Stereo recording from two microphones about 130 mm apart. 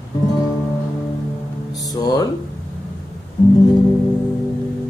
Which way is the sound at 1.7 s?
30° left (ahead or behind).